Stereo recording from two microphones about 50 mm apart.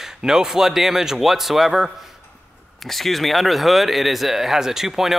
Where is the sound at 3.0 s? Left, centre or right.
Centre.